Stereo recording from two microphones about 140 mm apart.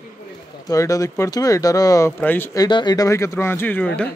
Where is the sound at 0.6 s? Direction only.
25° left (ahead or behind).